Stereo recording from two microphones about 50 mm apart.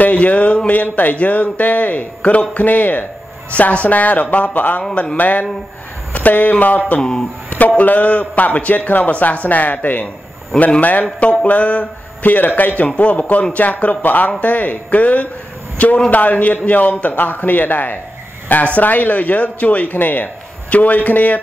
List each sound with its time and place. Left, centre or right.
0.0 s a sound: left
0.7 s a man's voice: left
7.0 s speech: centre
7.4 s a man's voice: left